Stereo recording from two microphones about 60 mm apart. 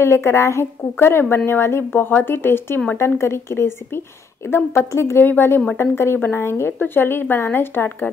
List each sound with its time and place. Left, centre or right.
0.0 s a woman's voice: left